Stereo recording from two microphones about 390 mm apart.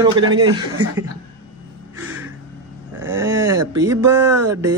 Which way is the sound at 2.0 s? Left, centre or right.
Centre.